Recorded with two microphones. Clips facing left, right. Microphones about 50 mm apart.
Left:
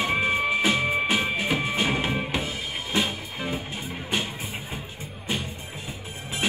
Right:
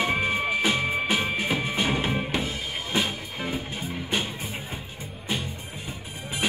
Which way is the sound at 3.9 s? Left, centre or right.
Centre.